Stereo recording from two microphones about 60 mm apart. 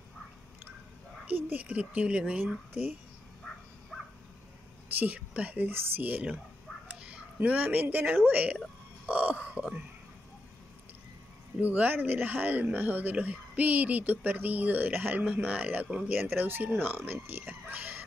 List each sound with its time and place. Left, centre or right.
1.2 s speech: right
2.4 s speech: right
4.9 s speech: right
6.9 s a sound: centre
7.4 s speech: right
11.6 s speech: right
15.2 s speech: right